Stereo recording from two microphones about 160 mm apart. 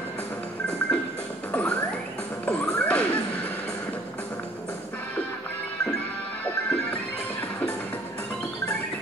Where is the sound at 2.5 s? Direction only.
10° left (ahead or behind).